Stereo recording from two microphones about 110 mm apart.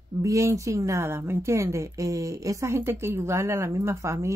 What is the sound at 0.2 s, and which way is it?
Speech, 30° right (ahead or behind).